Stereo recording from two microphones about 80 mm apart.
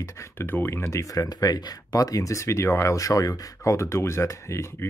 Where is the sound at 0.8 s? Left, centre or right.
Left.